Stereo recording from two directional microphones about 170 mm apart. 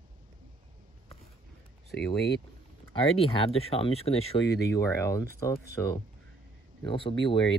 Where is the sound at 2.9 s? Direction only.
35° left (ahead or behind).